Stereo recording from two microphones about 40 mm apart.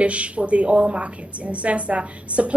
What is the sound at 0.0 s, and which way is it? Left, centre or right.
A woman's voice, right.